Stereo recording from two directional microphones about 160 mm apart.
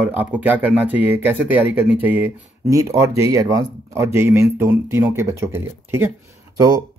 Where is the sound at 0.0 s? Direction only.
10° right (ahead or behind).